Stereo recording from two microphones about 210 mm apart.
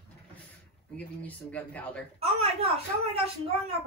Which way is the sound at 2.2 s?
30° right (ahead or behind).